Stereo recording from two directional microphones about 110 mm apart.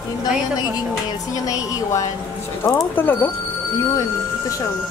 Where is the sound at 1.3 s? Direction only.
30° left (ahead or behind).